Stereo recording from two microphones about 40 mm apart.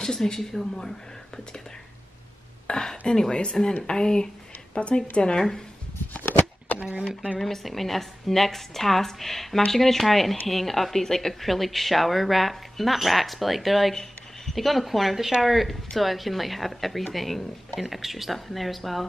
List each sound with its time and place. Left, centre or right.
0.0 s speech: centre
2.6 s a sound: centre
3.2 s speech: centre
6.8 s speech: right
7.3 s a woman's voice: centre